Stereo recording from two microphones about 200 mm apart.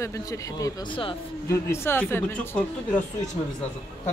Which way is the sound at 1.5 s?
15° left (ahead or behind).